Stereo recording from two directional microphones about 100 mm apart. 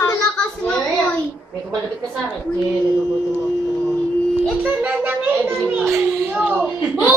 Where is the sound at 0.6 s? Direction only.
15° left (ahead or behind).